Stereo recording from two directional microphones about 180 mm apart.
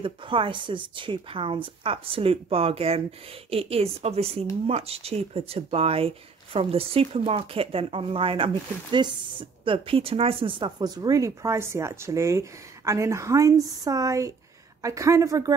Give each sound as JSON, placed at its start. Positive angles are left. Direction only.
{"t": 0.0, "sound": "a woman's voice", "side_deg": -30}